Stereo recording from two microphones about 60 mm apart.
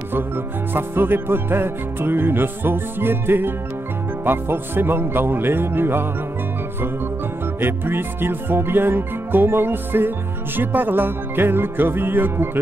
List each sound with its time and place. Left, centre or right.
0.7 s music: right
7.6 s music: right